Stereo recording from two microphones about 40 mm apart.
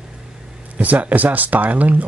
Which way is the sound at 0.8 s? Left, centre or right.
Right.